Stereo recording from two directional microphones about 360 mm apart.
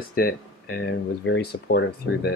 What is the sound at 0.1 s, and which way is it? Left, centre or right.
Speech, left.